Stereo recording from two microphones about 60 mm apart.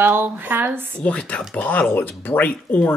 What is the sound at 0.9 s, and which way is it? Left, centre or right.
Speech, left.